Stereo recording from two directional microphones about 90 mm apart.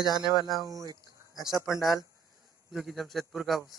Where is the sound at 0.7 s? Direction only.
45° right (ahead or behind).